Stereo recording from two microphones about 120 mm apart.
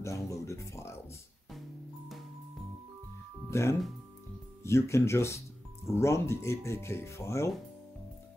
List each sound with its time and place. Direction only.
0.0 s a sound: 25° left (ahead or behind)
3.4 s music: 25° left (ahead or behind)
4.6 s speech: 25° left (ahead or behind)